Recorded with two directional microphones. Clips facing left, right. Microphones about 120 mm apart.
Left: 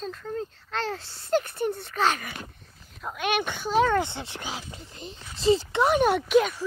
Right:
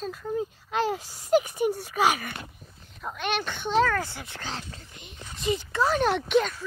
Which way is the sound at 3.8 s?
25° left (ahead or behind).